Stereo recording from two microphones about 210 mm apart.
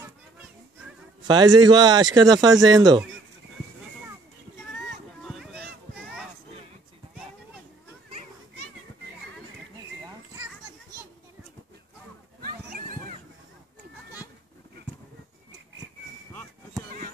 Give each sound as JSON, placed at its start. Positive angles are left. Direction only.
{"t": 1.2, "sound": "speech", "side_deg": -20}
{"t": 5.2, "sound": "a sound", "side_deg": 0}
{"t": 10.3, "sound": "children playing", "side_deg": -15}
{"t": 12.4, "sound": "children playing", "side_deg": -45}